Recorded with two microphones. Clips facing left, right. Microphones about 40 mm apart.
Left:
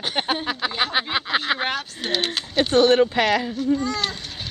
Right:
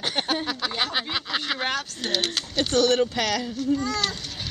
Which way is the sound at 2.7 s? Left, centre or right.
Left.